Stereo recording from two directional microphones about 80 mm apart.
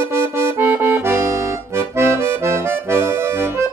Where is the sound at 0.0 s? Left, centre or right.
Right.